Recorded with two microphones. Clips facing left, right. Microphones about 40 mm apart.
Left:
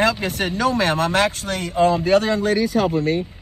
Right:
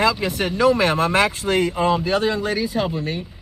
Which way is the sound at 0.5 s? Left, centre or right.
Right.